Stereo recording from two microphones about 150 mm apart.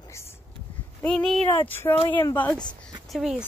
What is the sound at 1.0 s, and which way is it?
Speech, 5° left (ahead or behind).